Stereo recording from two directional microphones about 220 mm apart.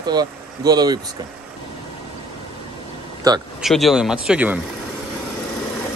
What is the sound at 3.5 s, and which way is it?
Speech, centre (ahead or behind).